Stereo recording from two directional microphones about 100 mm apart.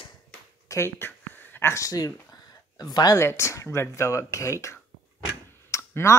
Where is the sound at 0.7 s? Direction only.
25° left (ahead or behind).